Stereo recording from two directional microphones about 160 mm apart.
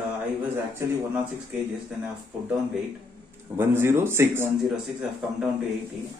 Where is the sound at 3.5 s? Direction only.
15° right (ahead or behind).